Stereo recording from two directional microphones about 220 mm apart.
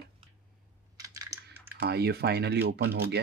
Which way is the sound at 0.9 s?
15° right (ahead or behind).